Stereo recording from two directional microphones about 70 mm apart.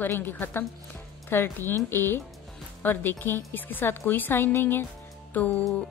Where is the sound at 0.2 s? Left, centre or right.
Left.